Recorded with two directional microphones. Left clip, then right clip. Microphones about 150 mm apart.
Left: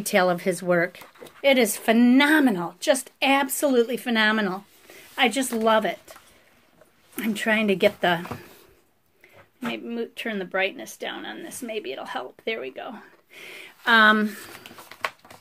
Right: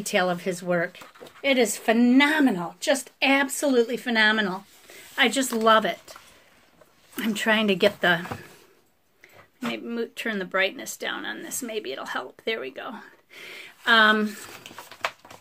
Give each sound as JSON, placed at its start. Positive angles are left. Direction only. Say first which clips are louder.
{"t": 0.0, "sound": "speech", "louder": "left 3 dB", "side_deg": 40}
{"t": 7.2, "sound": "speech", "louder": "right 1 dB", "side_deg": 0}
{"t": 9.6, "sound": "speech", "louder": "even", "side_deg": 0}
{"t": 13.4, "sound": "a sound", "louder": "even", "side_deg": 10}
{"t": 13.8, "sound": "speech", "louder": "left 1 dB", "side_deg": 25}